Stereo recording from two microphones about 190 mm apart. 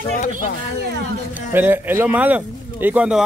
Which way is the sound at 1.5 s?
10° right (ahead or behind).